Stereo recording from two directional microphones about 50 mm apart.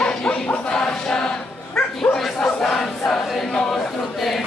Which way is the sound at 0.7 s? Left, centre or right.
Centre.